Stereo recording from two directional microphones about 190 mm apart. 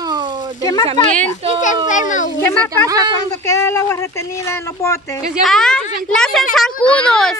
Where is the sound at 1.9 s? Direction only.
40° left (ahead or behind).